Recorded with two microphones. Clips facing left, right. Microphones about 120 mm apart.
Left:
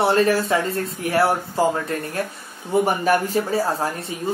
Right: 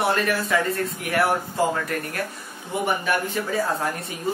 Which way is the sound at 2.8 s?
40° left (ahead or behind).